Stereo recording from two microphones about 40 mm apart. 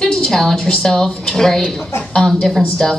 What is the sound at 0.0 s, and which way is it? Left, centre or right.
A woman's voice, centre.